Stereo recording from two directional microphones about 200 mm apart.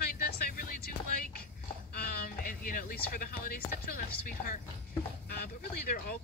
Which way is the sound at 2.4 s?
45° left (ahead or behind).